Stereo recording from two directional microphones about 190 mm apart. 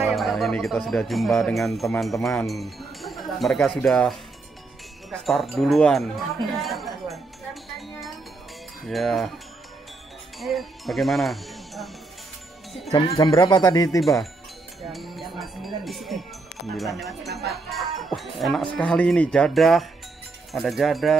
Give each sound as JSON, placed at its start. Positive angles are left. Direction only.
{"t": 0.1, "sound": "speech", "side_deg": 0}
{"t": 5.1, "sound": "speech", "side_deg": 0}
{"t": 10.4, "sound": "speech", "side_deg": 0}
{"t": 13.2, "sound": "speech", "side_deg": 20}
{"t": 14.8, "sound": "speech", "side_deg": 0}
{"t": 17.5, "sound": "music", "side_deg": 0}
{"t": 18.7, "sound": "speech", "side_deg": 5}